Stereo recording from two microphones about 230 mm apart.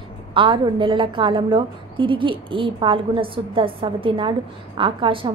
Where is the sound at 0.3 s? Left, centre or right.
Right.